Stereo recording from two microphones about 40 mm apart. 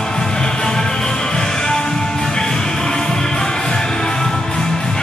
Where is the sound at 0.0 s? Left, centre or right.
Centre.